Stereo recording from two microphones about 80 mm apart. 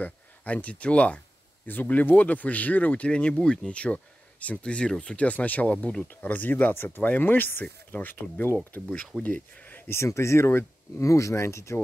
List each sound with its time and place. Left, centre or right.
0.0 s speech: centre; by 11.8 s left